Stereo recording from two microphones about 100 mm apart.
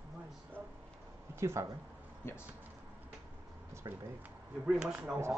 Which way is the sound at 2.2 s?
25° left (ahead or behind).